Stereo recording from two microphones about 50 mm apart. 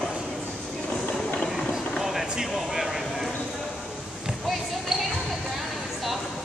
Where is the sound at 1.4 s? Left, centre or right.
Centre.